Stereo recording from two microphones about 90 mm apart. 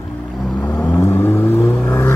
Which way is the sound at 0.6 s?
20° left (ahead or behind).